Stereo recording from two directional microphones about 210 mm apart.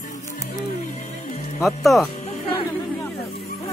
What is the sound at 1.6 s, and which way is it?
Speech, centre (ahead or behind).